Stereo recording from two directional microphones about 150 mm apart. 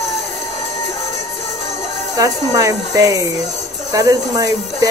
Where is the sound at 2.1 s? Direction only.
20° right (ahead or behind).